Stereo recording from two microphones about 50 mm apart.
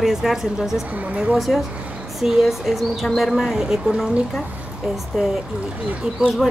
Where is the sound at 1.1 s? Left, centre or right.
Right.